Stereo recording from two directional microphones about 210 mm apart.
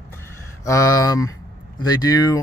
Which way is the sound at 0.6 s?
15° left (ahead or behind).